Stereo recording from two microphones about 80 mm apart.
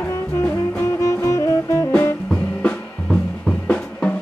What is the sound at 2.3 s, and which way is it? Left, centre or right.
Drum kit, centre.